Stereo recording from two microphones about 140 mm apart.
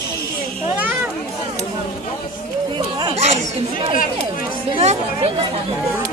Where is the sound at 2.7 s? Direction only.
35° right (ahead or behind).